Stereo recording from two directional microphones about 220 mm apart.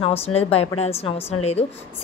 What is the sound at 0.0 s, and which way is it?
A woman's voice, 25° left (ahead or behind).